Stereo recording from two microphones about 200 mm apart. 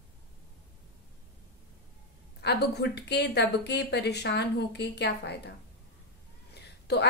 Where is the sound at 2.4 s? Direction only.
55° left (ahead or behind).